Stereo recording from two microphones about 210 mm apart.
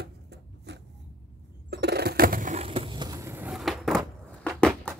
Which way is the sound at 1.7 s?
50° right (ahead or behind).